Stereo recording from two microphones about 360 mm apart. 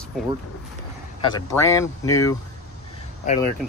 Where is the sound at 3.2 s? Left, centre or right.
Centre.